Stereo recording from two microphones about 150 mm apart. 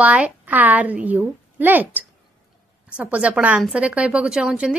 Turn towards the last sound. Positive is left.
turn(degrees=-5)  # may be behind; listen again after turning